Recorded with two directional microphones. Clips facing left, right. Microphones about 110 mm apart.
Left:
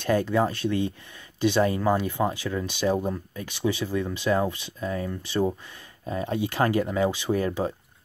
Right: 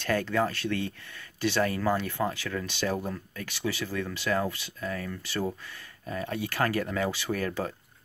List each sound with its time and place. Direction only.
0.0 s speech: 20° left (ahead or behind)